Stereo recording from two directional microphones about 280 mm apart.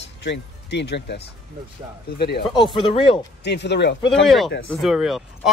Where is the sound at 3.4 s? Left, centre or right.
Left.